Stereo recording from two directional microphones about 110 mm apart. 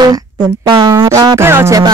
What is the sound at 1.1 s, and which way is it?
Music, 40° right (ahead or behind).